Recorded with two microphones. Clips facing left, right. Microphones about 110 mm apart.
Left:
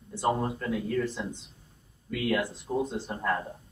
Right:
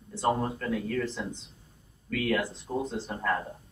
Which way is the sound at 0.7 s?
20° left (ahead or behind).